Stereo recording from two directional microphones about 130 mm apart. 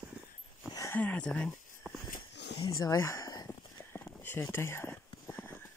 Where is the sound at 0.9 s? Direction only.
10° left (ahead or behind).